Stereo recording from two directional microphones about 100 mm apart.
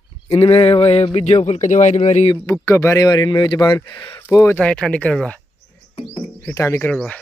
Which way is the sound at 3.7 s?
25° left (ahead or behind).